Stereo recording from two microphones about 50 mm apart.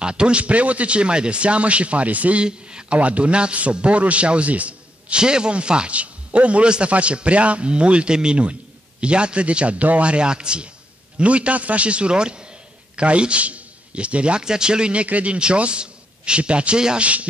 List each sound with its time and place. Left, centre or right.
0.0 s a man's voice: right
2.4 s a man's voice: centre